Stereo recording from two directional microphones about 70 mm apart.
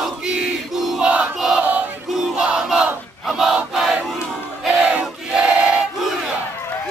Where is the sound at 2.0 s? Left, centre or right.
Centre.